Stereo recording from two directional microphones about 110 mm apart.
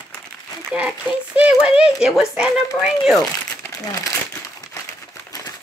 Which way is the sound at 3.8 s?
30° left (ahead or behind).